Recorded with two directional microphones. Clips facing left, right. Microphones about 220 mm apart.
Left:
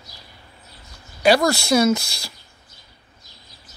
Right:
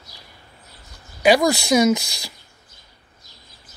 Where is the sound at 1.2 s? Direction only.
15° right (ahead or behind).